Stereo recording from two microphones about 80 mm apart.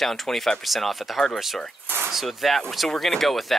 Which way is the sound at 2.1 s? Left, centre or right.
Centre.